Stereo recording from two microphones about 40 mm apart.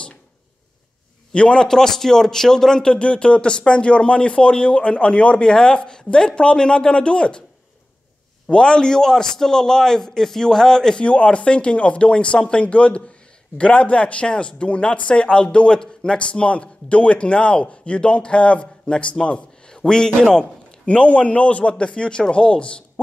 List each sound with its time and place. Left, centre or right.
1.3 s speech: left
1.7 s a man's voice: centre
2.9 s speech: left
8.5 s a man's voice: left
11.0 s a man's voice: left
20.8 s speech: left